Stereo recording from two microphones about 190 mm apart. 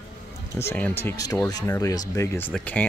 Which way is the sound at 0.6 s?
10° left (ahead or behind).